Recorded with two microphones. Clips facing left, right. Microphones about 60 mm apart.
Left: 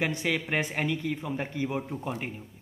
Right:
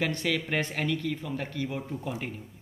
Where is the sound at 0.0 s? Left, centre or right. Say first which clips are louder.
Even; centre.